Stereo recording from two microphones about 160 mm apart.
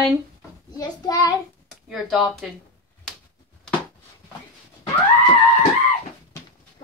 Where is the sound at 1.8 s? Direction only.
Centre (ahead or behind).